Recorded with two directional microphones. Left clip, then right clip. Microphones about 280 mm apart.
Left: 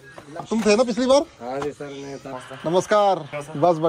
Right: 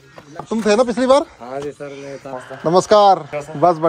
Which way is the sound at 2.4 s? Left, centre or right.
Right.